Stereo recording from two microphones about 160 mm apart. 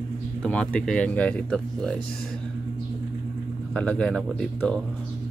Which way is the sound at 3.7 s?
10° left (ahead or behind).